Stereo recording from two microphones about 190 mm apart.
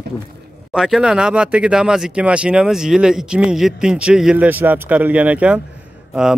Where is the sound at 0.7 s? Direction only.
Centre (ahead or behind).